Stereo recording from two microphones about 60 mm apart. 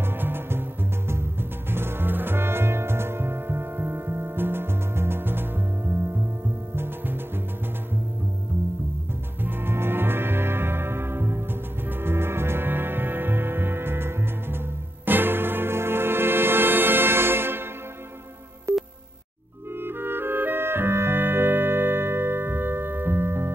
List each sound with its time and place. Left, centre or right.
0.0 s music: right
9.4 s music: right
18.7 s music: right
19.7 s clarinet: right